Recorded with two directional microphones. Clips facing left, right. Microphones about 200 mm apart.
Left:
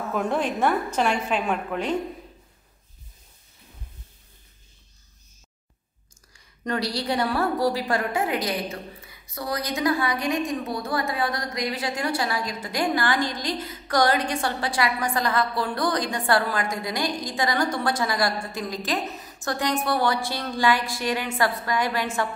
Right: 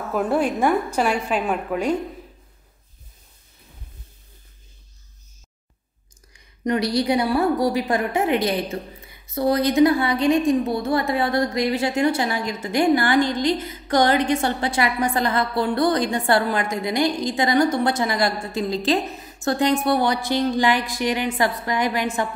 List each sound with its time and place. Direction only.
0.1 s a woman's voice: 5° right (ahead or behind)
6.3 s a woman's voice: 20° right (ahead or behind)